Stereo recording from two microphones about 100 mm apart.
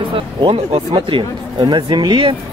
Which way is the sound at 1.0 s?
55° right (ahead or behind).